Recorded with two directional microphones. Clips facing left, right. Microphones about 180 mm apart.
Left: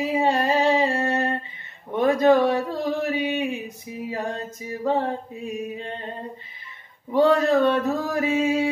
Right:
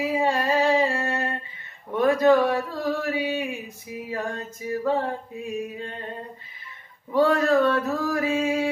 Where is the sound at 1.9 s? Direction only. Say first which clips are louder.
Left 1 dB; 20° left (ahead or behind).